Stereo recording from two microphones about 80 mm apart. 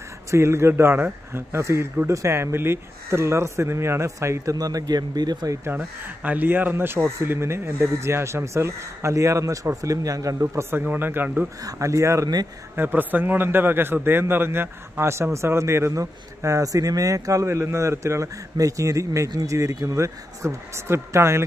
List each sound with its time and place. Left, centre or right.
0.3 s speech: right
4.6 s speech: right
6.2 s a man's voice: right
10.8 s a man's voice: right
11.6 s speech: right
12.7 s a man's voice: right